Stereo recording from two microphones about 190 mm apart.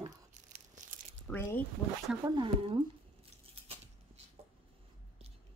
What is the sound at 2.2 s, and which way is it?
Speech, 25° right (ahead or behind).